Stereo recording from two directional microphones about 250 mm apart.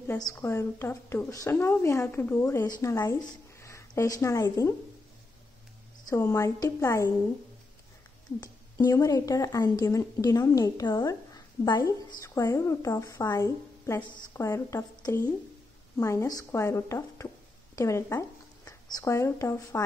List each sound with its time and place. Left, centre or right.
0.0 s a woman's voice: centre
6.0 s a woman's voice: centre
8.4 s a woman's voice: centre